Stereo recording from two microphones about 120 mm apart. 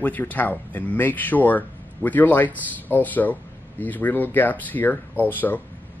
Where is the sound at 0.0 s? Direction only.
15° left (ahead or behind).